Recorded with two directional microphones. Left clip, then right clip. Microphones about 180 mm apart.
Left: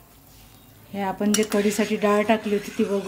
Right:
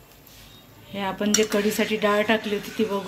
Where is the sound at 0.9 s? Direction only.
40° left (ahead or behind).